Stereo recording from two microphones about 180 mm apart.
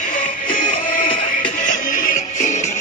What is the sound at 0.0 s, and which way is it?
Music, 45° left (ahead or behind).